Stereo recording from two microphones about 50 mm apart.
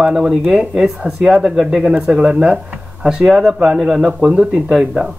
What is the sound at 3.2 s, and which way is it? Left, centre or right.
Speech, centre.